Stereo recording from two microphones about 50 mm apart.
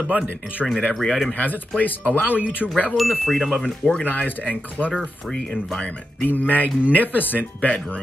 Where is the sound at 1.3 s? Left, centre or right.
Left.